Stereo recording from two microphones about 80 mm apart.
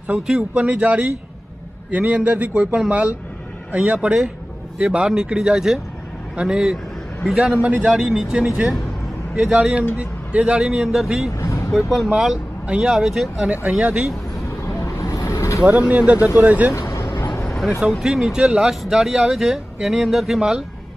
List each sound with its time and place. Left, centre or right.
0.1 s speech: centre
11.3 s vehicle: left
11.7 s speech: centre
13.5 s speech: centre
15.2 s vehicle: left
15.6 s speech: centre
16.9 s vehicle: left
17.6 s speech: centre